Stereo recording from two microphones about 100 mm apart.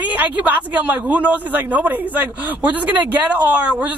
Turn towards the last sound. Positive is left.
turn(degrees=-15)  # may be behind; listen again after turning